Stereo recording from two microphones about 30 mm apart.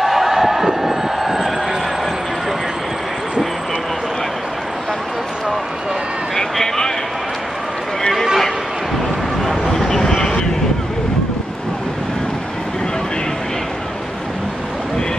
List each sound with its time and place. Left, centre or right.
0.0 s crowd: centre
9.8 s vehicle: centre